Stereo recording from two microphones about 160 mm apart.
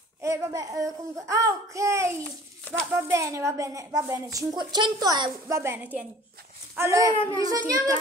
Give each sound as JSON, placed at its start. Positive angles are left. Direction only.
{"t": 0.2, "sound": "a child's voice", "side_deg": -20}
{"t": 5.6, "sound": "a woman's voice", "side_deg": -15}